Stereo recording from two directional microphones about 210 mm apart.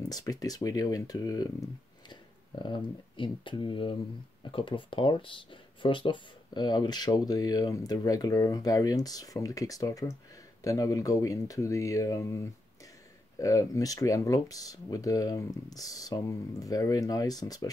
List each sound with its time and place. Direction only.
0.0 s speech: 15° left (ahead or behind)
2.6 s speech: 20° left (ahead or behind)